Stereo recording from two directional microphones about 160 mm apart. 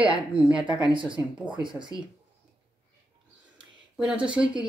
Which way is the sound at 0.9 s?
30° right (ahead or behind).